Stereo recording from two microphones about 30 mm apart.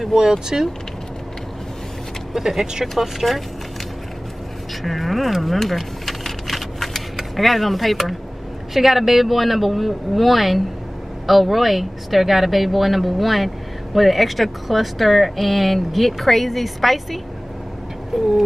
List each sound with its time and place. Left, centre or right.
0.2 s speech: centre
2.3 s speech: centre
3.2 s speech: centre
4.8 s a sound: centre
7.2 s speech: centre
18.1 s speech: centre